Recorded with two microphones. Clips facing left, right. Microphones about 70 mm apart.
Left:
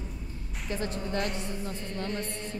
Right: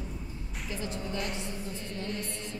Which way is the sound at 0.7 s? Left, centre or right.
Left.